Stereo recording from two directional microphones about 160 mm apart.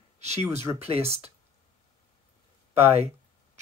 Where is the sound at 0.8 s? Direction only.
40° right (ahead or behind).